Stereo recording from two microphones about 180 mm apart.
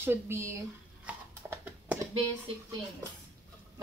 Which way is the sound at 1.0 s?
10° right (ahead or behind).